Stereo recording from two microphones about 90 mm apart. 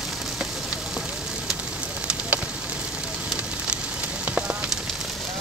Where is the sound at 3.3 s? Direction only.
15° right (ahead or behind).